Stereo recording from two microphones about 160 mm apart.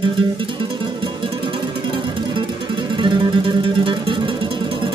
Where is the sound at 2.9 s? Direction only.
30° right (ahead or behind).